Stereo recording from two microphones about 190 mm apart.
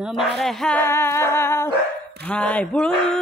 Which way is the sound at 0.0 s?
Centre (ahead or behind).